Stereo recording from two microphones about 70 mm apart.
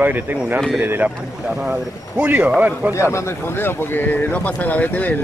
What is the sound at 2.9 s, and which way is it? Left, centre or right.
Speech, left.